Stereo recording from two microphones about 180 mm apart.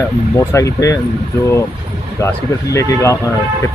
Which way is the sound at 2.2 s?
15° left (ahead or behind).